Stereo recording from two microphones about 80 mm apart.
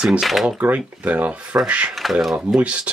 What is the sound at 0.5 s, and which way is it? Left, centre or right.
Speech, centre.